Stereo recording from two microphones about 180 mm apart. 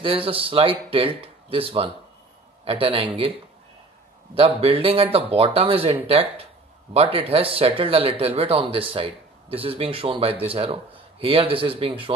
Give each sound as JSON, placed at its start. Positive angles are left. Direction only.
{"t": 0.0, "sound": "speech", "side_deg": -30}
{"t": 4.4, "sound": "speech", "side_deg": -30}